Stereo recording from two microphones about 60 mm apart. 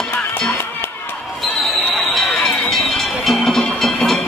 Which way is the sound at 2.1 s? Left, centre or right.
Centre.